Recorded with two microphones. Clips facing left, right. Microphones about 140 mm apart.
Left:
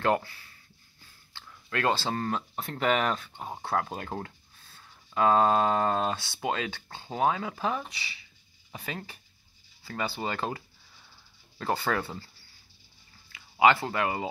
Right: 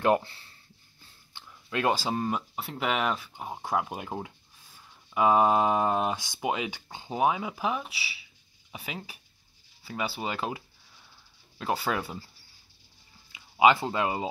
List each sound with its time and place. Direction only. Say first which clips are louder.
0.0 s speech: right 2 dB; 20° right (ahead or behind)
1.3 s speech: right 1 dB; 15° right (ahead or behind)
13.3 s speech: right 1 dB; 20° right (ahead or behind)